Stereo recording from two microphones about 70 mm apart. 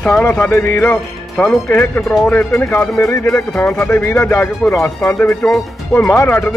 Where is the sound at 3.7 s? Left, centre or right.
Left.